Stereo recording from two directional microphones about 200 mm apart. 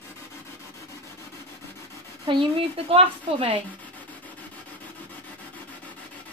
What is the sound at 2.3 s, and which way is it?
A woman's voice, 25° right (ahead or behind).